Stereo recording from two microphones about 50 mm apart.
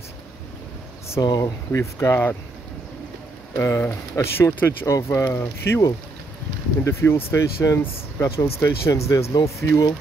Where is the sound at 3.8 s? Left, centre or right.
Left.